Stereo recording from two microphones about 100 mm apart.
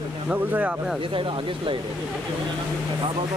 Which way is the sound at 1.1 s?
60° right (ahead or behind).